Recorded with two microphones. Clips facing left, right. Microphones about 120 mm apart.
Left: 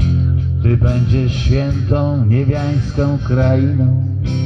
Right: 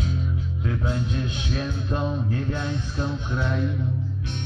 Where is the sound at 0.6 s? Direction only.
80° left.